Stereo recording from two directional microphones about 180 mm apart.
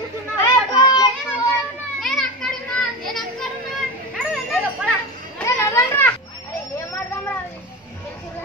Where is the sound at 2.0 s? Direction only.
Centre (ahead or behind).